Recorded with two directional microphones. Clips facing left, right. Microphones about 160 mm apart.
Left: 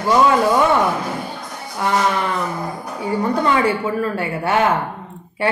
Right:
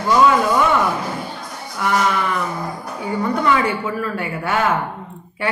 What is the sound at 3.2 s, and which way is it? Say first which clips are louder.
Speech: even; 25° left (ahead or behind).